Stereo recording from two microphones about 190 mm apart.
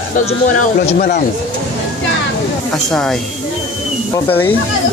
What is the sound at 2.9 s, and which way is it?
Speech, 5° left (ahead or behind).